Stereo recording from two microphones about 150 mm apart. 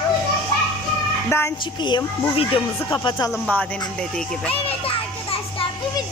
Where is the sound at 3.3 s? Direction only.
5° left (ahead or behind).